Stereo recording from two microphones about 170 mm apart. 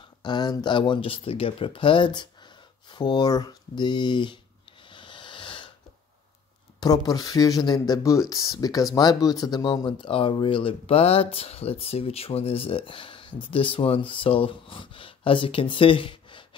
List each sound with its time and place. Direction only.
0.2 s speech: 25° left (ahead or behind)
4.8 s wheeze: 30° left (ahead or behind)
6.8 s speech: 20° left (ahead or behind)